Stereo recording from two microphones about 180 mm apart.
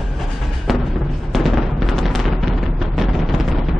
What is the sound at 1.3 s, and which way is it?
Fireworks, centre (ahead or behind).